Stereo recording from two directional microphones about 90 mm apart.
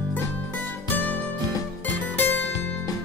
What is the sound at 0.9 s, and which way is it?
Music, 20° left (ahead or behind).